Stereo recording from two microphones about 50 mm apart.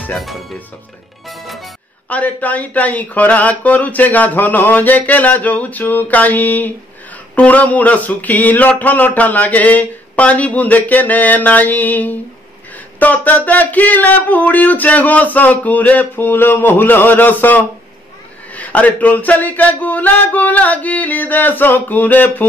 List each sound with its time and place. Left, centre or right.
0.1 s speech: centre
1.2 s music: centre
2.0 s speech: left